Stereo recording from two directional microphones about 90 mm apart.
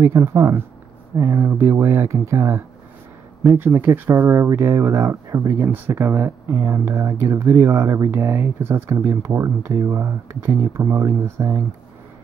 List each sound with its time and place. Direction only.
0.0 s speech: 30° right (ahead or behind)
5.7 s speech: 25° right (ahead or behind)